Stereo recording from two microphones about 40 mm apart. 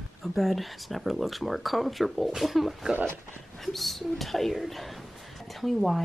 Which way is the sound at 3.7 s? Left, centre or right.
Centre.